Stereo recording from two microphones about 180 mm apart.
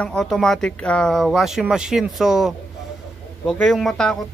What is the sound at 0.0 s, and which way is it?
Speech, 5° left (ahead or behind).